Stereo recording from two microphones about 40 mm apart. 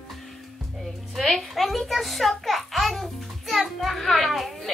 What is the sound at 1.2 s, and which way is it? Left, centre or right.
A child's voice, centre.